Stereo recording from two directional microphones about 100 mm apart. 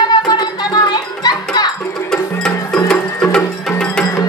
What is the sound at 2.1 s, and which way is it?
Music, 5° left (ahead or behind).